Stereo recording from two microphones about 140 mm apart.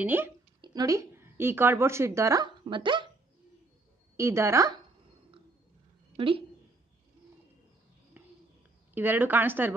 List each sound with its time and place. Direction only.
0.0 s a woman's voice: 15° right (ahead or behind)
0.6 s a woman's voice: 25° right (ahead or behind)
2.7 s speech: 35° right (ahead or behind)
4.2 s speech: 20° right (ahead or behind)
6.1 s speech: 40° right (ahead or behind)
8.9 s a woman's voice: 15° right (ahead or behind)